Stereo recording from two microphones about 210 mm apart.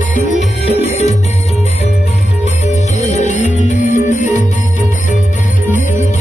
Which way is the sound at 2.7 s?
35° left (ahead or behind).